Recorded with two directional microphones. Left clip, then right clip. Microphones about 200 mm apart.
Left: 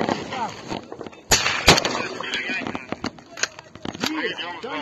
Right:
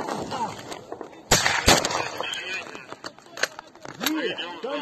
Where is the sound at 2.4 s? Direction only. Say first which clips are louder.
Left 5 dB; 20° left (ahead or behind).